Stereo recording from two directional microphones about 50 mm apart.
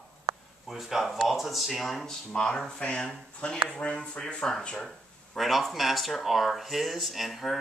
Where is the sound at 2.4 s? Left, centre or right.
Centre.